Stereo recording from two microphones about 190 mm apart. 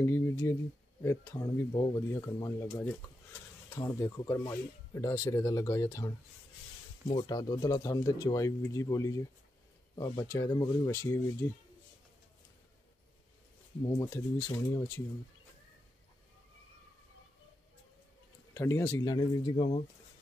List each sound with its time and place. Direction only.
0.0 s speech: 15° left (ahead or behind)
7.2 s speech: 20° left (ahead or behind)
13.8 s speech: 15° left (ahead or behind)
18.5 s speech: 15° left (ahead or behind)